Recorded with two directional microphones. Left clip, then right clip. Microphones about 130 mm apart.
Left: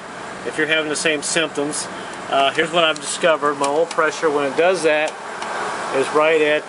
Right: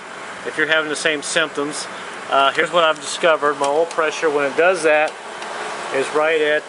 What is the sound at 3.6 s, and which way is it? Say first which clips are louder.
Speech: even; 10° right (ahead or behind).